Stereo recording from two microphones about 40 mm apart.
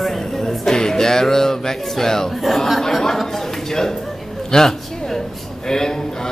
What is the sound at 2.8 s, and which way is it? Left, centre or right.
Chatter, centre.